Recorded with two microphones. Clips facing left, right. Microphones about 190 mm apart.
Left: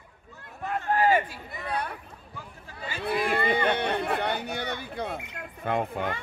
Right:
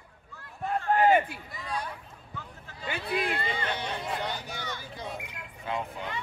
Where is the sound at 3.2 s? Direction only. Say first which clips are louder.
Left 7 dB; 60° left (ahead or behind).